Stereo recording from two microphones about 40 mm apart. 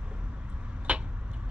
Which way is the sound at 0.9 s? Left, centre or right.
Right.